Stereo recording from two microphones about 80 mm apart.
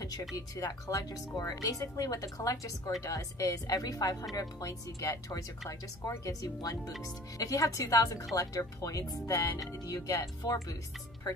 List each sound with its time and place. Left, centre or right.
0.0 s speech: left